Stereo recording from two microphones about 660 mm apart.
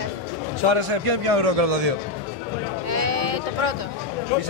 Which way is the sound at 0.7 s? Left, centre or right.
Right.